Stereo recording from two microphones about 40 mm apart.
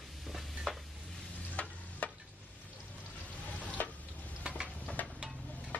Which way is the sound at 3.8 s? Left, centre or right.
Left.